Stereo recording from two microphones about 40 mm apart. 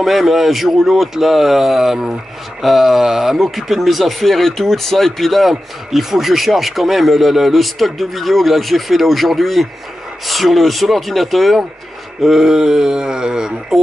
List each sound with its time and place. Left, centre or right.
0.0 s speech: centre